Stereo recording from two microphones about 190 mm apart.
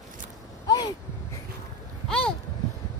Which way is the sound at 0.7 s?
20° left (ahead or behind).